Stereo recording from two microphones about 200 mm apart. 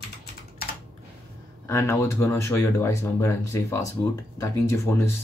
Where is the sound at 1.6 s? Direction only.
15° left (ahead or behind).